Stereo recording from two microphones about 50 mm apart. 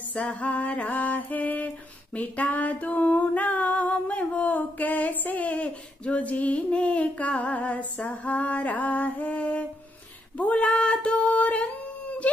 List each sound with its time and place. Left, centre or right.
0.1 s music: left
2.1 s female singing: left